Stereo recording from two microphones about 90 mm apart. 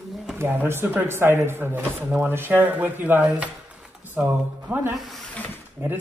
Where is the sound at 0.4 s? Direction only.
15° right (ahead or behind).